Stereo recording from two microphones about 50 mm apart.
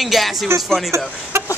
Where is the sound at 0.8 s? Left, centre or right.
Right.